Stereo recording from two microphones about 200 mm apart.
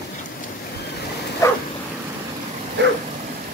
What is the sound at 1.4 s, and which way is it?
Dog, 15° left (ahead or behind).